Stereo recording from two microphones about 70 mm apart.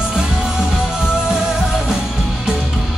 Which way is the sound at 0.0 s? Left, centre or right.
Centre.